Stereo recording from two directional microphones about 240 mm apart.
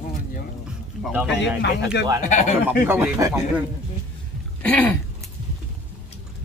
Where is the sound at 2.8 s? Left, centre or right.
Centre.